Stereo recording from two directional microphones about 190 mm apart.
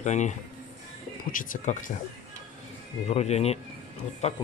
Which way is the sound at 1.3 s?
45° left (ahead or behind).